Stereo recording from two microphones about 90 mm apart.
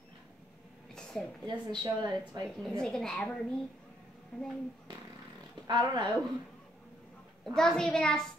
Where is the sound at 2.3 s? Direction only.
55° right (ahead or behind).